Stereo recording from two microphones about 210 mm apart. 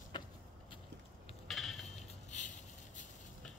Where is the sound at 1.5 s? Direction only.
Centre (ahead or behind).